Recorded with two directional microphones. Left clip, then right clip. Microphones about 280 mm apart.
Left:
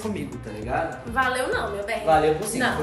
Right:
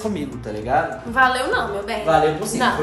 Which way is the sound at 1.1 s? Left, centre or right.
Right.